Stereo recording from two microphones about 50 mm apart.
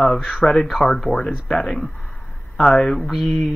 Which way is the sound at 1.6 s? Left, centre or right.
Left.